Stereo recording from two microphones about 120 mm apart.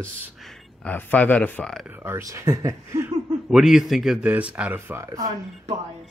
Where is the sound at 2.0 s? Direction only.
25° right (ahead or behind).